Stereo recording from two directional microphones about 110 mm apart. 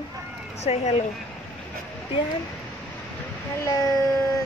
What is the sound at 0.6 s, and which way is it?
Speech, 75° left (ahead or behind).